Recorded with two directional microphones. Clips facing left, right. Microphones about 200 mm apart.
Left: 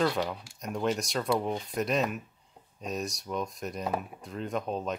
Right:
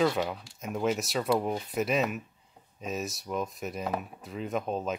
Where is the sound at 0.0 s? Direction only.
Centre (ahead or behind).